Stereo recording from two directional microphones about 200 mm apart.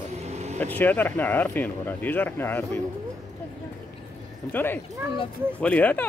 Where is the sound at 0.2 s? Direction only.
35° right (ahead or behind).